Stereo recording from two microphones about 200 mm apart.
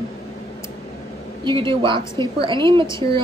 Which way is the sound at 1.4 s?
25° right (ahead or behind).